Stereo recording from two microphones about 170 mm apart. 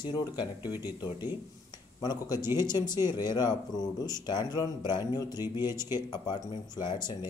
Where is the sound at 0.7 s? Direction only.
10° right (ahead or behind).